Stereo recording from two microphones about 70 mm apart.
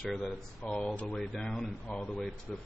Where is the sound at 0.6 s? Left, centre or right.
Centre.